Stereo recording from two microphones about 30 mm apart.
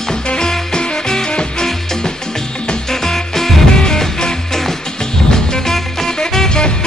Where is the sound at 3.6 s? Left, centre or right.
Left.